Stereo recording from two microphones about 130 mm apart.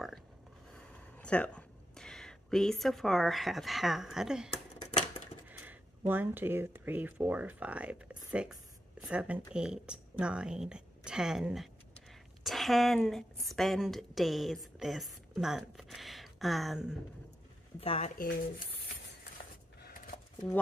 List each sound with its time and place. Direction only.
1.1 s speech: 10° left (ahead or behind)
5.5 s a woman's voice: 15° right (ahead or behind)
17.7 s speech: 50° left (ahead or behind)
18.1 s speech: 90° left